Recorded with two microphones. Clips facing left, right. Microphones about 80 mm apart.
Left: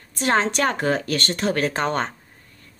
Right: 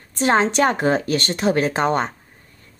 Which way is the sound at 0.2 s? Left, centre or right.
Right.